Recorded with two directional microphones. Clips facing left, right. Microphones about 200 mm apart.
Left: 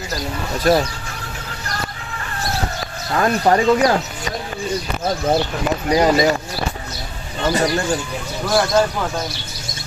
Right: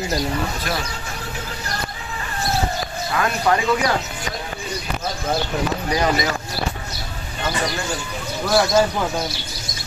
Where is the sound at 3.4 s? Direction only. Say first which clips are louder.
Left 5 dB; 40° left (ahead or behind).